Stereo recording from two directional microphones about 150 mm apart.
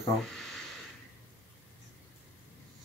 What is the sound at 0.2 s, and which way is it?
Speech, centre (ahead or behind).